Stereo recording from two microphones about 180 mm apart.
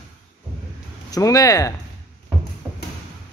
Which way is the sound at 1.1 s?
20° left (ahead or behind).